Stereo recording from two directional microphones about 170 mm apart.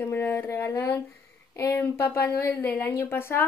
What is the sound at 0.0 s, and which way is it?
Speech, 15° left (ahead or behind).